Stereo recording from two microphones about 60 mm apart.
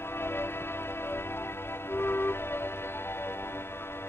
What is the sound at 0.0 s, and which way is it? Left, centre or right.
Music, left.